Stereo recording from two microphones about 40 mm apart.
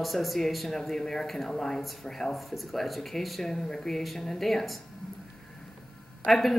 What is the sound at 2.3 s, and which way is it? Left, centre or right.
Speech, centre.